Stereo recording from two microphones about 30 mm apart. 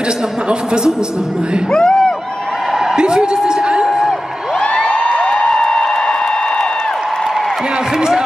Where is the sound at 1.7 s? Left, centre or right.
Left.